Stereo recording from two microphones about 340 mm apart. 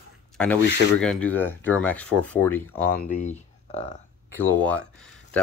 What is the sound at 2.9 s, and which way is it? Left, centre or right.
Speech, left.